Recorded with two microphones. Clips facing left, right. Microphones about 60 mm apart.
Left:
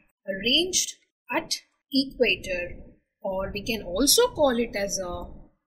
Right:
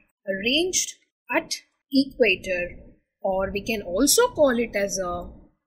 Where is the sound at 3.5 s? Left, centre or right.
Right.